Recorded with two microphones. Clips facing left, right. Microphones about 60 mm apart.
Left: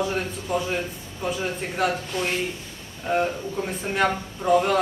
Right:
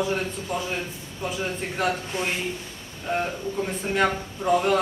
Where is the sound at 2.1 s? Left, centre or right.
Centre.